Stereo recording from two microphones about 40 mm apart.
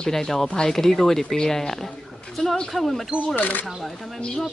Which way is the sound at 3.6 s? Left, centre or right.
Centre.